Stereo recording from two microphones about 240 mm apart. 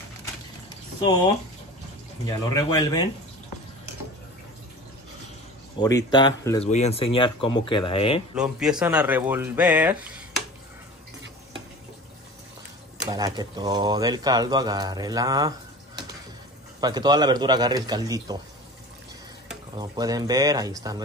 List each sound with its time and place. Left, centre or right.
2.2 s speech: centre
5.8 s speech: centre
8.4 s speech: centre
13.1 s speech: centre
16.8 s speech: centre
19.8 s speech: centre